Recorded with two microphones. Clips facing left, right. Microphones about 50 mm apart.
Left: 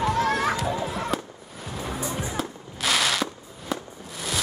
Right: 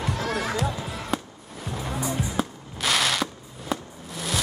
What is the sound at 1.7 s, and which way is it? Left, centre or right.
Fireworks, centre.